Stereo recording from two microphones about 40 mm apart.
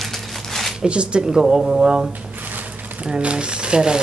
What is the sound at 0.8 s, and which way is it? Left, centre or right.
Speech, right.